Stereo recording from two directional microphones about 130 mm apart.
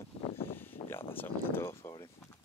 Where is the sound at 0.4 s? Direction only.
15° left (ahead or behind).